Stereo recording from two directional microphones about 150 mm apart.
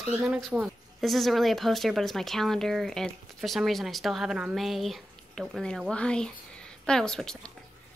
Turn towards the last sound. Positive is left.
turn(degrees=5)  # may be behind; listen again after turning